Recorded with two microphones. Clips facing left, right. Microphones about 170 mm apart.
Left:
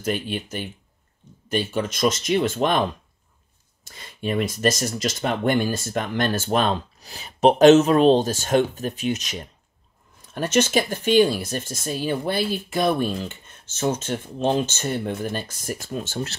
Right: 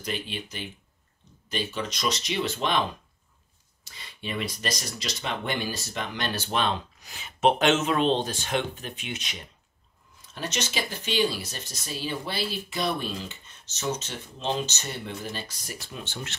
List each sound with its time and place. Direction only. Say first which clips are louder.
0.0 s speech: left 7 dB; 50° left (ahead or behind)
3.8 s speech: left 9 dB; 45° left (ahead or behind)